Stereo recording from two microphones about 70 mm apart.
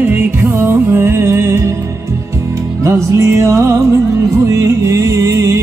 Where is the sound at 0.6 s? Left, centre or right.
Right.